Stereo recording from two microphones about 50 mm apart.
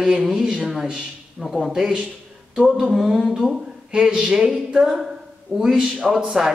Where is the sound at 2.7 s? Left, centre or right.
Centre.